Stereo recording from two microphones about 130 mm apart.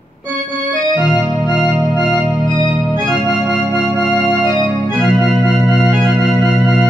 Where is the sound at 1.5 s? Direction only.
35° left (ahead or behind).